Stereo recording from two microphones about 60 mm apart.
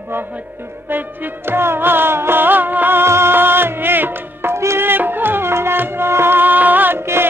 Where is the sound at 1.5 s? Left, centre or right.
Right.